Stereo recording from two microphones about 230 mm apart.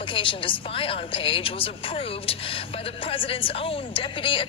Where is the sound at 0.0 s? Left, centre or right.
Left.